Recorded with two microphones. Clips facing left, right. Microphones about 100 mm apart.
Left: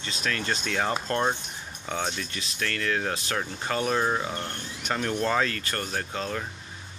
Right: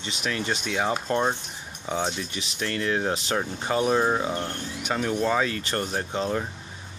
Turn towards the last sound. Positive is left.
turn(degrees=-20)  # may be behind; listen again after turning